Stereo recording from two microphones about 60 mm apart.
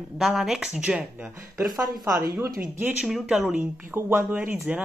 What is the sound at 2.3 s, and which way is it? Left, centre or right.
Speech, right.